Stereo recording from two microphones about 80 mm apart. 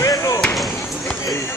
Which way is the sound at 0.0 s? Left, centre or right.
Left.